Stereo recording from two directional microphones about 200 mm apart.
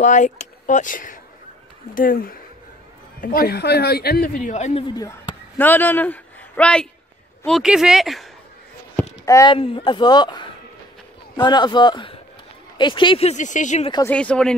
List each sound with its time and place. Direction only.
0.0 s speech: 40° left (ahead or behind)
4.8 s a child's voice: 20° left (ahead or behind)
5.6 s a man's voice: 10° left (ahead or behind)
9.2 s a child's voice: 15° left (ahead or behind); by 13.9 s 35° left (ahead or behind)
14.1 s speech: 5° left (ahead or behind)